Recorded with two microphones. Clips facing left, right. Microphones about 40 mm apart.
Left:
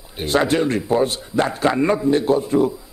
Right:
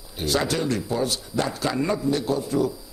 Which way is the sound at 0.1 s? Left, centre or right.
Left.